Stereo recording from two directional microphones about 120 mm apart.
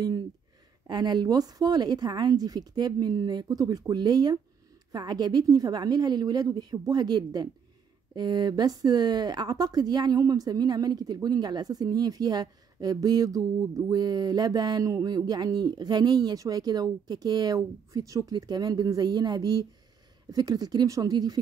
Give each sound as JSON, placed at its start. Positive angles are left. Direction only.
{"t": 0.8, "sound": "speech", "side_deg": -35}